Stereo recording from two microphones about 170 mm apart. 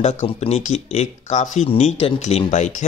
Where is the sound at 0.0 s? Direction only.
40° left (ahead or behind).